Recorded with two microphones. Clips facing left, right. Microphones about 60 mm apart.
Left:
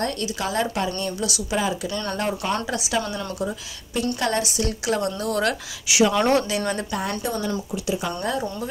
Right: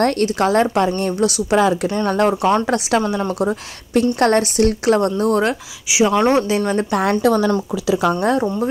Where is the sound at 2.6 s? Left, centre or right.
Right.